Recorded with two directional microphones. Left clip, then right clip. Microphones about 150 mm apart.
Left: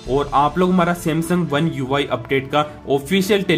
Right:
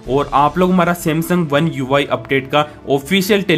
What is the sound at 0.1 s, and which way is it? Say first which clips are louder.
A man's voice: right 3 dB; 10° right (ahead or behind).